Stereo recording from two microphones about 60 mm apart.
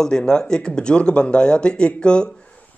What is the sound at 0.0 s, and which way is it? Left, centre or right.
A man's voice, centre.